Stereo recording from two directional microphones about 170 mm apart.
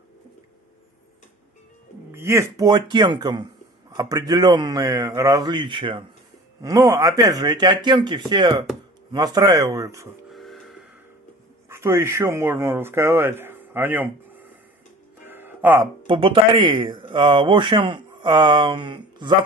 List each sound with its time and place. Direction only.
2.1 s speech: 15° right (ahead or behind)
10.3 s printer: centre (ahead or behind)
11.7 s speech: 15° right (ahead or behind)
15.2 s music: 10° right (ahead or behind)
16.1 s speech: 30° right (ahead or behind)